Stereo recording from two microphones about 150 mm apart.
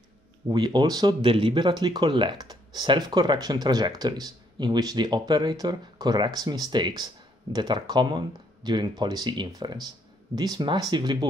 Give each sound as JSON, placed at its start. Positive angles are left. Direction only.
{"t": 0.5, "sound": "speech", "side_deg": -30}